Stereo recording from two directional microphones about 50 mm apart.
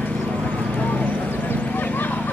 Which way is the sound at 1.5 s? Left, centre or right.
Left.